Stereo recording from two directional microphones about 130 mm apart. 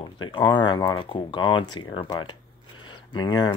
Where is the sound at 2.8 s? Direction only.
35° left (ahead or behind).